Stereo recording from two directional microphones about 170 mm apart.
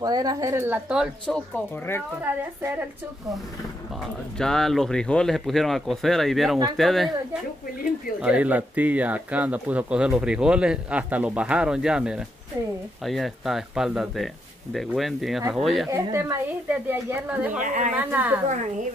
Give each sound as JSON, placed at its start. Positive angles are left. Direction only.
{"t": 0.0, "sound": "speech", "side_deg": -20}
{"t": 2.2, "sound": "speech", "side_deg": -10}
{"t": 4.4, "sound": "speech", "side_deg": 5}
{"t": 8.2, "sound": "speech", "side_deg": -5}
{"t": 15.9, "sound": "speech", "side_deg": -15}
{"t": 17.6, "sound": "a woman's voice", "side_deg": -50}
{"t": 17.9, "sound": "speech", "side_deg": -10}